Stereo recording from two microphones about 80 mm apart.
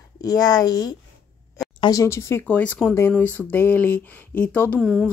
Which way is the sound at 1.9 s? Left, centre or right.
Left.